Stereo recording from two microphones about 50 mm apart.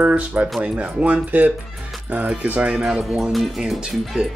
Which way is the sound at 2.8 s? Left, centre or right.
Centre.